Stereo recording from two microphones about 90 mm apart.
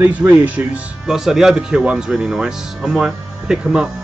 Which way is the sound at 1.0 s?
5° right (ahead or behind).